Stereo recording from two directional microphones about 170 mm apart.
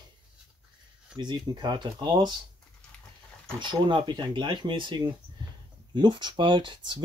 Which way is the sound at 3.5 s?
25° right (ahead or behind).